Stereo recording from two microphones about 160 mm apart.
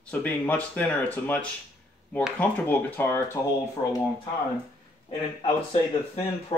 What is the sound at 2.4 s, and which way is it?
Speech, 10° left (ahead or behind).